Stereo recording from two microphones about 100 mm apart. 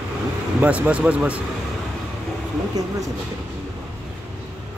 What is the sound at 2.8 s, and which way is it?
Speech, 35° right (ahead or behind).